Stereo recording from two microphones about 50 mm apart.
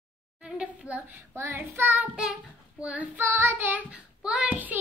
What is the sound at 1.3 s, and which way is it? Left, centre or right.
Child singing, right.